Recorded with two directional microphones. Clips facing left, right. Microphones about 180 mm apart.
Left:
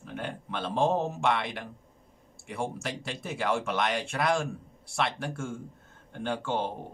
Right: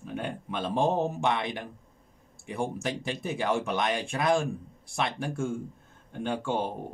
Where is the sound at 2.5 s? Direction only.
15° right (ahead or behind).